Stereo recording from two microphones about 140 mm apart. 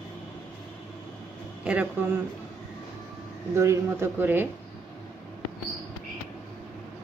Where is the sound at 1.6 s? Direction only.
10° right (ahead or behind).